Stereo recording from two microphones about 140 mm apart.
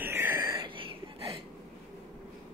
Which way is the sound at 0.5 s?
40° right (ahead or behind).